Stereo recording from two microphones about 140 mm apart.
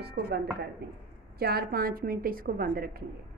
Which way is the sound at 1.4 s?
90° right.